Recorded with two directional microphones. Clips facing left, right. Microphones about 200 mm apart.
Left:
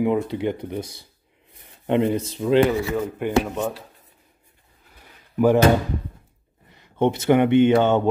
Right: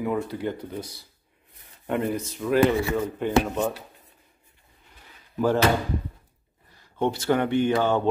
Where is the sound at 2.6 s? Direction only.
5° left (ahead or behind).